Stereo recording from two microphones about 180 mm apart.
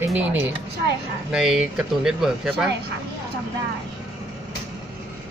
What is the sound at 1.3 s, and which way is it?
Speech, 5° right (ahead or behind).